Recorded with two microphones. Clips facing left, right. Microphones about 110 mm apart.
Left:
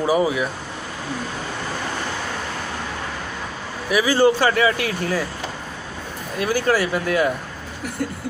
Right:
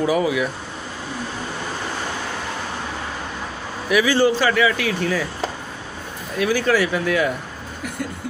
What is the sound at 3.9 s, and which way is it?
Speech, 40° left (ahead or behind).